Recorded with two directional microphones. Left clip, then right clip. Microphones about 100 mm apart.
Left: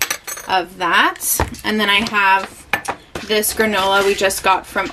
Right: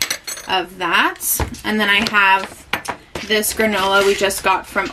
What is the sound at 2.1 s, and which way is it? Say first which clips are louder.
Dishes: right 1 dB; 10° left (ahead or behind).